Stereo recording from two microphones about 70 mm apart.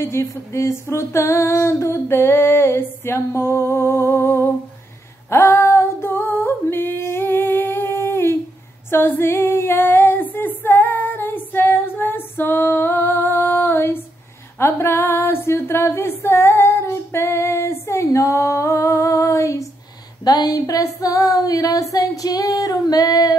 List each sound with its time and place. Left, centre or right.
0.0 s female singing: left
20.2 s female singing: left